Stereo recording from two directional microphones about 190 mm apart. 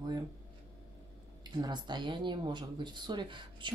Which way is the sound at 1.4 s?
20° right (ahead or behind).